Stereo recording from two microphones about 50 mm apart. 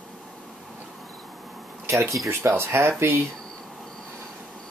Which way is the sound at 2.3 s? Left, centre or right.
Right.